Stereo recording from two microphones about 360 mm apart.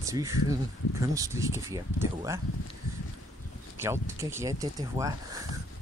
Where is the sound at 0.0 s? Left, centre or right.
Centre.